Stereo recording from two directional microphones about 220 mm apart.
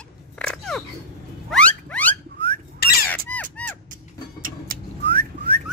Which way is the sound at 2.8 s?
45° left (ahead or behind).